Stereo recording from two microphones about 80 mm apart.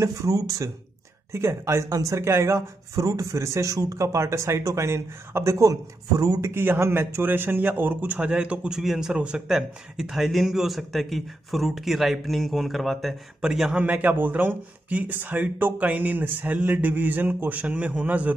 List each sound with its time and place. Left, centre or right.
0.0 s speech: right
6.4 s a man's voice: right; by 13.7 s centre
13.7 s speech: centre